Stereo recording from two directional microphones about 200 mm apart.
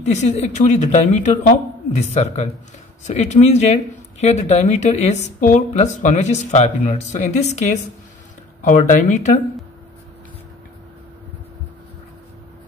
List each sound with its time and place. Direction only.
0.0 s speech: 35° left (ahead or behind)